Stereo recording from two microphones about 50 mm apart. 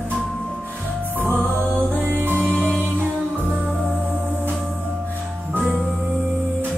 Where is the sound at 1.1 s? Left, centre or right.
Right.